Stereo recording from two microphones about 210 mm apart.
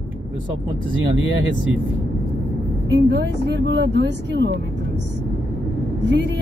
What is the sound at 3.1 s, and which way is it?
Speech, 55° right (ahead or behind).